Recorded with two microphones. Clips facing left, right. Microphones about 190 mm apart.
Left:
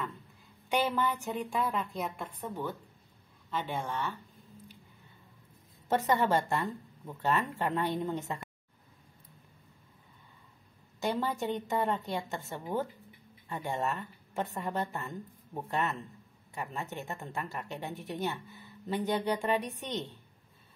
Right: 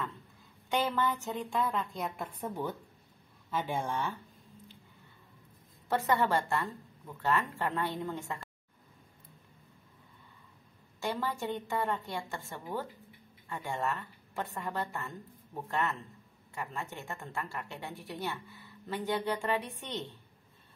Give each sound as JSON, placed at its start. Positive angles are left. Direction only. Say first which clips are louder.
{"t": 0.7, "sound": "a woman's voice", "louder": "left 1 dB", "side_deg": 10}
{"t": 5.9, "sound": "a woman's voice", "louder": "left 1 dB", "side_deg": 20}
{"t": 11.0, "sound": "a woman's voice", "louder": "left 3 dB", "side_deg": 20}